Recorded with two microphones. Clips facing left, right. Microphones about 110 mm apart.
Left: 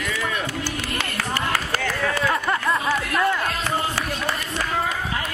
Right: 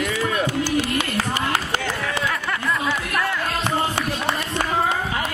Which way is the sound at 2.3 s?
30° left (ahead or behind).